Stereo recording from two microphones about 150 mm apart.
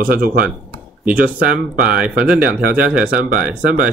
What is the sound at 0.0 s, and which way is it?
Speech, 75° right (ahead or behind).